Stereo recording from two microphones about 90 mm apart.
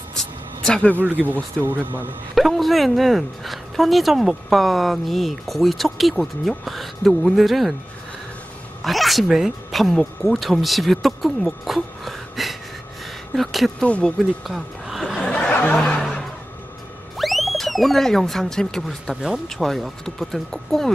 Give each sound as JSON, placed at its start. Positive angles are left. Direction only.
{"t": 0.1, "sound": "a sound", "side_deg": 10}
{"t": 0.9, "sound": "speech", "side_deg": -20}
{"t": 2.3, "sound": "speech", "side_deg": 0}
{"t": 8.8, "sound": "speech", "side_deg": 0}
{"t": 13.8, "sound": "speech", "side_deg": 15}
{"t": 14.5, "sound": "chuckle", "side_deg": 0}
{"t": 15.5, "sound": "music", "side_deg": 10}
{"t": 17.2, "sound": "speech", "side_deg": 0}